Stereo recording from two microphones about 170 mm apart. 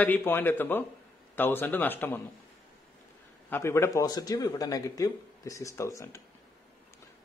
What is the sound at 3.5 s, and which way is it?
Speech, 15° left (ahead or behind).